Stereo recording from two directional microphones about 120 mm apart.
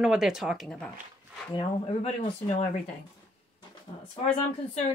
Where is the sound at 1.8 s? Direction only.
60° left (ahead or behind).